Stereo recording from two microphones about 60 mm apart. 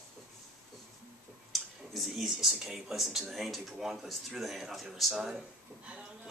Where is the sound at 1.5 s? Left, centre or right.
Centre.